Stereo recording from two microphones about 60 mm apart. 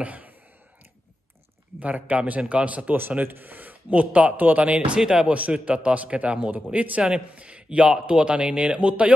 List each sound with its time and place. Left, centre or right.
0.0 s a sound: right
1.8 s speech: right
4.9 s speech: centre
5.3 s speech: right